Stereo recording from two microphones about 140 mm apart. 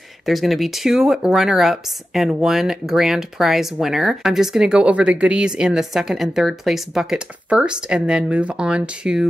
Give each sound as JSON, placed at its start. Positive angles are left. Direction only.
{"t": 0.3, "sound": "speech", "side_deg": 0}